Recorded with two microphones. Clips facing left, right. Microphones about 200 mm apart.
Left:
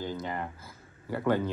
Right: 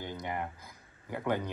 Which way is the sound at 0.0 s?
20° right (ahead or behind).